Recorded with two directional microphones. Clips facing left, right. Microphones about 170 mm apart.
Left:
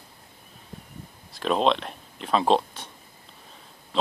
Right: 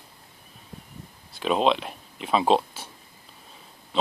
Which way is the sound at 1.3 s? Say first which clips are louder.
Even; 5° right (ahead or behind).